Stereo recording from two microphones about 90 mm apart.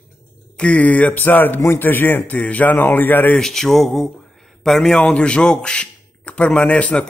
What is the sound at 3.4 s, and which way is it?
Speech, 5° left (ahead or behind).